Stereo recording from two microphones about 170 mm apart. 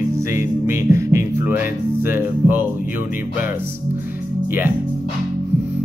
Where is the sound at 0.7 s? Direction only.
15° right (ahead or behind).